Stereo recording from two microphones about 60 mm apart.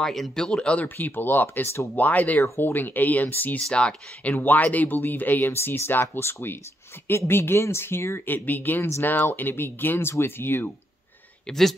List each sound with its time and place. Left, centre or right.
0.0 s speech: centre
0.5 s speech: centre
0.8 s speech: left
3.6 s speech: centre
4.3 s speech: left
8.3 s speech: left
8.8 s speech: left
9.2 s speech: left
11.4 s speech: centre